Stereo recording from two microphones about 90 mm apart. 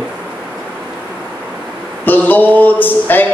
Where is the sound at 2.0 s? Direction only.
20° left (ahead or behind).